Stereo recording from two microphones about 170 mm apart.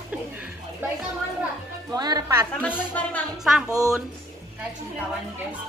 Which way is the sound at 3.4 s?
Centre (ahead or behind).